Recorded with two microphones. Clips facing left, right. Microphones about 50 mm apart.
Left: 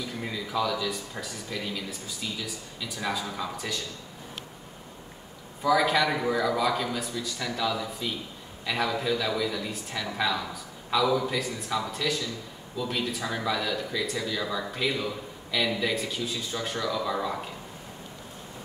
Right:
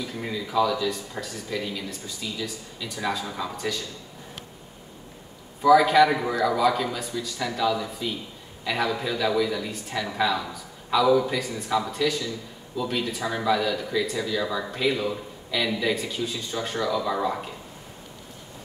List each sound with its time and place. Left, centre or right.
0.3 s speech: centre
5.6 s speech: centre